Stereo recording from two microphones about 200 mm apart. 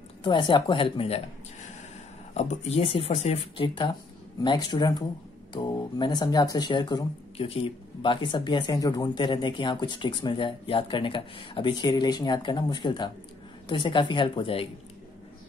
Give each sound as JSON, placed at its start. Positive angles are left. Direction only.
{"t": 0.2, "sound": "speech", "side_deg": 25}
{"t": 2.3, "sound": "speech", "side_deg": 35}